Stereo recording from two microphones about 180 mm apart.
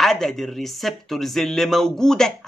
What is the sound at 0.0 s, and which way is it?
A man's voice, centre (ahead or behind).